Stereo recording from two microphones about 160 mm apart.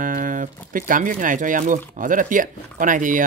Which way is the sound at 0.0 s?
55° right (ahead or behind).